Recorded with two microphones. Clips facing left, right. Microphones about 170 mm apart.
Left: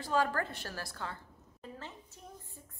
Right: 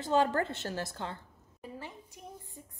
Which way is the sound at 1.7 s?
10° right (ahead or behind).